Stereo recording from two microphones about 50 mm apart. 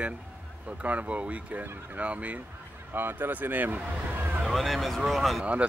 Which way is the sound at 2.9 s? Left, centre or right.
Right.